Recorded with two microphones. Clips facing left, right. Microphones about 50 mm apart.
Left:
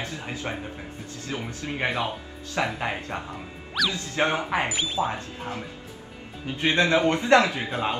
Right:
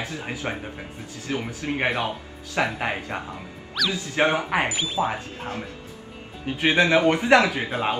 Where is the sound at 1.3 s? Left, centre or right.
Right.